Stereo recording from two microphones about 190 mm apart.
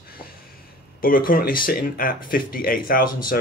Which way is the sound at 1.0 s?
50° left (ahead or behind).